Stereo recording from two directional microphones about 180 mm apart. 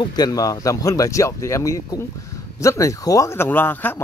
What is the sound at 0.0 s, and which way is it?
Speech, 20° left (ahead or behind).